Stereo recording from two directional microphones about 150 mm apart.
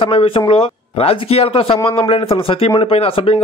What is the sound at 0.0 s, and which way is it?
A man's voice, 35° left (ahead or behind).